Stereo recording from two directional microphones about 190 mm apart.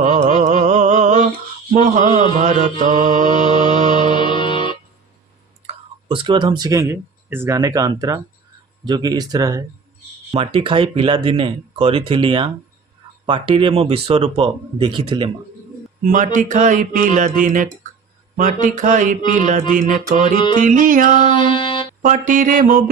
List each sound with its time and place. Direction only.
0.0 s music: 40° right (ahead or behind)
1.7 s a man's voice: 40° right (ahead or behind)
2.8 s mantra: 45° right (ahead or behind)
3.4 s music: 25° left (ahead or behind)
5.7 s speech: 25° right (ahead or behind)
16.0 s speech: 45° right (ahead or behind)
18.3 s mantra: 40° right (ahead or behind)
19.7 s speech: 45° right (ahead or behind)
21.4 s music: 25° left (ahead or behind)
22.0 s speech: 45° right (ahead or behind)